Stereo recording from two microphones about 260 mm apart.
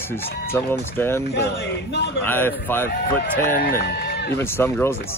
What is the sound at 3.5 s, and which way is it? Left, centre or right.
Speech, left.